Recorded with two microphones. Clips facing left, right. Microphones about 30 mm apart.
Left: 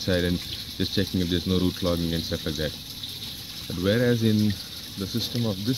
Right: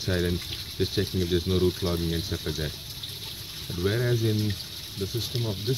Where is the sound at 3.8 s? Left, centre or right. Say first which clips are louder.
Left 5 dB; centre.